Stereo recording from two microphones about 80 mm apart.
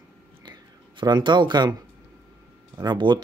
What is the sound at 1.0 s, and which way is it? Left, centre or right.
Speech, right.